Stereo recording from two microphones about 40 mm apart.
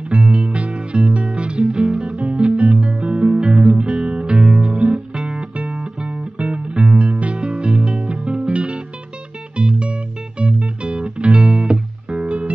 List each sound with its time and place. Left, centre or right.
0.1 s music: right
7.0 s music: right